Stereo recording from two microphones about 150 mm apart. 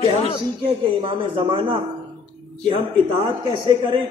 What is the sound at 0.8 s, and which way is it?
A man's voice, 35° right (ahead or behind).